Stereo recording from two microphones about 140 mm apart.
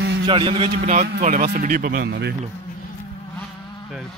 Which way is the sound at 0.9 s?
60° right (ahead or behind).